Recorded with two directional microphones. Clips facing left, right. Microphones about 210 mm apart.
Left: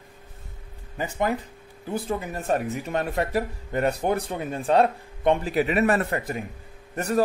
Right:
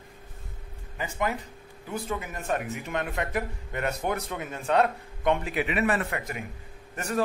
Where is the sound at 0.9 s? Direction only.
35° left (ahead or behind).